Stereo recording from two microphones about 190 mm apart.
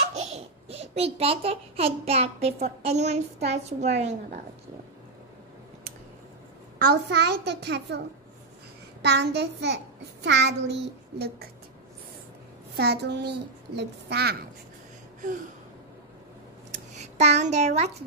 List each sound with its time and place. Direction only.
0.1 s a child's voice: 35° right (ahead or behind)
3.8 s child singing: 35° right (ahead or behind)
6.8 s a child's voice: 55° right (ahead or behind)
9.0 s a child's voice: 65° right (ahead or behind)
12.7 s a child's voice: 60° right (ahead or behind)
17.2 s child singing: 35° right (ahead or behind)